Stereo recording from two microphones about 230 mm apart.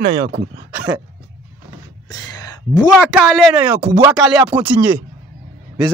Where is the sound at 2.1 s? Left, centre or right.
Centre.